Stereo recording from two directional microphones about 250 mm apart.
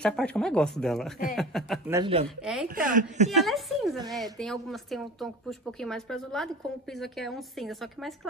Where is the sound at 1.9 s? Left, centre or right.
Centre.